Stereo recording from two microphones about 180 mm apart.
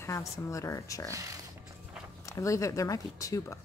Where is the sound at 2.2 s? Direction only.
15° left (ahead or behind).